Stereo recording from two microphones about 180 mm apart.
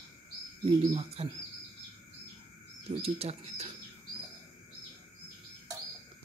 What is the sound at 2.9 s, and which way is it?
Speech, 35° right (ahead or behind).